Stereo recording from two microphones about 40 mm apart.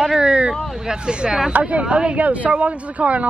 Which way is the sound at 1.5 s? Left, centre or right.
Right.